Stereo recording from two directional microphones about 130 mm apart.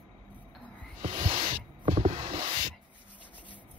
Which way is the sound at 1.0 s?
40° right (ahead or behind).